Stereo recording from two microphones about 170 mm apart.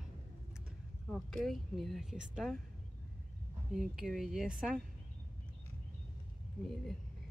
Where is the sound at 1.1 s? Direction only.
Centre (ahead or behind).